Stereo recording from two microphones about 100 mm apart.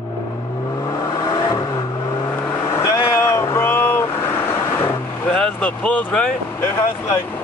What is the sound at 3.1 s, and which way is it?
Waves, 25° left (ahead or behind).